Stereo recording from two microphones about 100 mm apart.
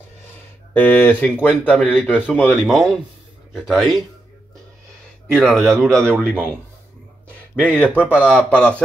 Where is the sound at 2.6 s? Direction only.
Centre (ahead or behind).